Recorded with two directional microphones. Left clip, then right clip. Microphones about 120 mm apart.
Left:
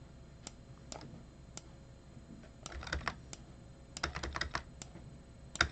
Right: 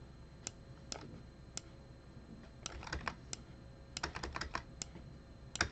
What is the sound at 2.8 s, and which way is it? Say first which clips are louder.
Computer keyboard: left 4 dB; 25° left (ahead or behind).